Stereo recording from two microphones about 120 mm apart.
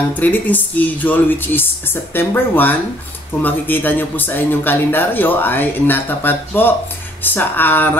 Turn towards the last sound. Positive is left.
turn(degrees=15)  # may be behind; listen again after turning